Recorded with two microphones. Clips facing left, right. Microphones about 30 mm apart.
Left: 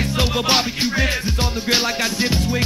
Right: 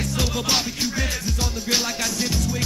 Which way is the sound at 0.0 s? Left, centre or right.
Left.